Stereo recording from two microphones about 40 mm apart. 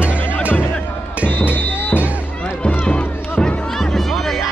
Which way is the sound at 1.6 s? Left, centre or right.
Left.